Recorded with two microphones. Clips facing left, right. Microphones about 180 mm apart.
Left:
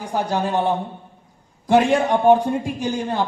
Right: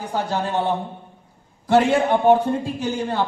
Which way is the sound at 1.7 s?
15° left (ahead or behind).